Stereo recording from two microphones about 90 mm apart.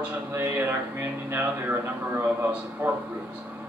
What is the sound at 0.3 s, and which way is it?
Speech, 25° right (ahead or behind).